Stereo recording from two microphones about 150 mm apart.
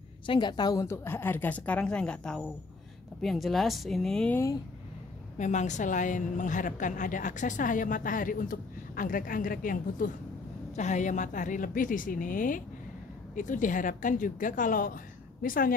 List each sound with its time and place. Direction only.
0.3 s a woman's voice: 30° left (ahead or behind); by 4.4 s 5° left (ahead or behind)
5.4 s a woman's voice: 55° left (ahead or behind); by 10.0 s 70° left (ahead or behind)
10.8 s a woman's voice: 55° left (ahead or behind); by 15.7 s 75° left (ahead or behind)